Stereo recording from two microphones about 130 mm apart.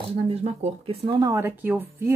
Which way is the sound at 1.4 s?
15° right (ahead or behind).